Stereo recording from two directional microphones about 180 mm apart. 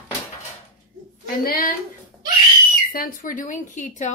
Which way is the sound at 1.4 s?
55° left (ahead or behind).